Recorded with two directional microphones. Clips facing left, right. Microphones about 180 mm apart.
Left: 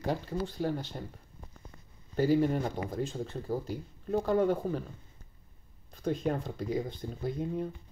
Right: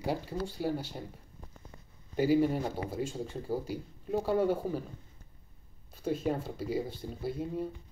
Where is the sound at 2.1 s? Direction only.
10° right (ahead or behind).